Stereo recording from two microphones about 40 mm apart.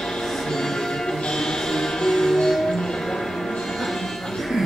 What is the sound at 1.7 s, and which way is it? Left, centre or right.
Music, centre.